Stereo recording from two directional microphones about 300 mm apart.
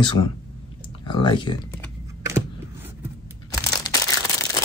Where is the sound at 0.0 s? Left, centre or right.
Centre.